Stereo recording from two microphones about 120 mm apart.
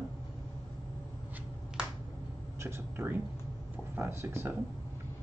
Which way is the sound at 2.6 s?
20° right (ahead or behind).